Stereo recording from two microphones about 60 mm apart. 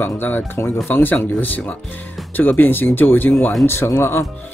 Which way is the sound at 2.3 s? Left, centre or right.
Left.